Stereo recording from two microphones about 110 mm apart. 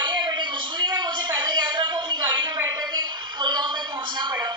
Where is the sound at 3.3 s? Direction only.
45° right (ahead or behind).